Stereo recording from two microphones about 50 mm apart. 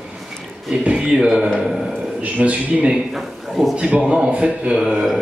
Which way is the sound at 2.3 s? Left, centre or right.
Right.